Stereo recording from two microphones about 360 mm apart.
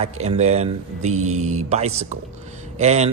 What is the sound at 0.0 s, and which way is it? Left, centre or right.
A man's voice, centre.